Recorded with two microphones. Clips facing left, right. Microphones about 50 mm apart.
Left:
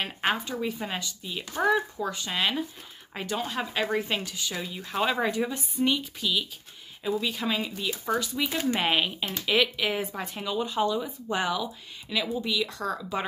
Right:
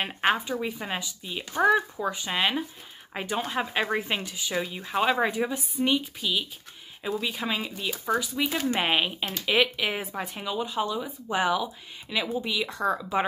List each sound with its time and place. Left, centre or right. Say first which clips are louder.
0.3 s speech: right 3 dB; centre